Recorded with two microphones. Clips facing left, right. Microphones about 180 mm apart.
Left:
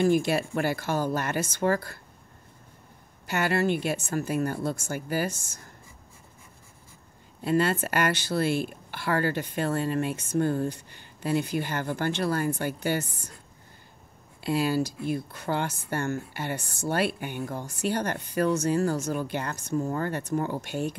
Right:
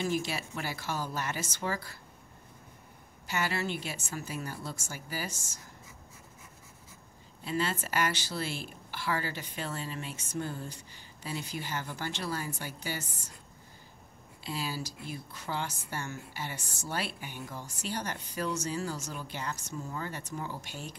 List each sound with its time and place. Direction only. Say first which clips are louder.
0.0 s a woman's voice: left 9 dB; 55° left (ahead or behind)
3.3 s a woman's voice: left 8 dB; 60° left (ahead or behind)
7.4 s a woman's voice: left 8 dB; 60° left (ahead or behind)
14.4 s a woman's voice: left 11 dB; 60° left (ahead or behind)